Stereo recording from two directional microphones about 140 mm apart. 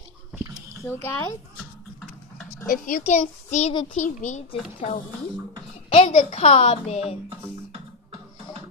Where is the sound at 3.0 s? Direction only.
55° left (ahead or behind).